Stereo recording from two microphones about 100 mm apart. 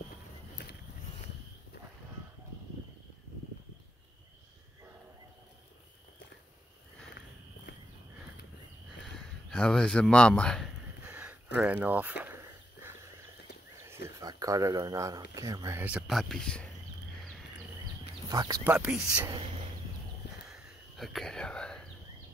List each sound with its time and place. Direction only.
9.1 s speech: 10° left (ahead or behind)
11.1 s a sound: 10° right (ahead or behind)
14.2 s speech: 35° right (ahead or behind)
16.1 s speech: centre (ahead or behind)
18.3 s speech: 40° right (ahead or behind)
18.6 s speech: 20° right (ahead or behind)
18.9 s speech: 10° right (ahead or behind)
20.4 s whispering: centre (ahead or behind)